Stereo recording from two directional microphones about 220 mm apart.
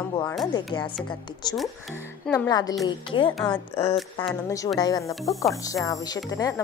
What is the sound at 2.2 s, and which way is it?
A woman's voice, 15° left (ahead or behind).